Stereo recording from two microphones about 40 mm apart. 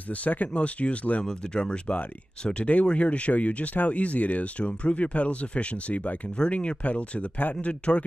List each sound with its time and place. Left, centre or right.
0.1 s speech: left
1.2 s speech: left